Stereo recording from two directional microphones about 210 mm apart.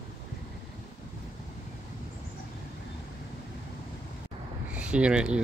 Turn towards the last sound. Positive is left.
turn(degrees=-5)  # may be behind; listen again after turning